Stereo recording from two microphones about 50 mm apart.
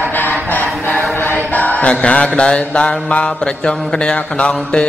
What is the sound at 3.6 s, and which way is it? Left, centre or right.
Mantra, centre.